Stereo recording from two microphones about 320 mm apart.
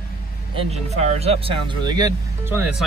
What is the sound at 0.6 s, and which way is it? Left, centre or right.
Speech, centre.